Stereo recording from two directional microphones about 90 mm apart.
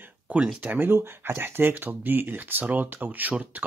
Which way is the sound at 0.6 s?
20° right (ahead or behind).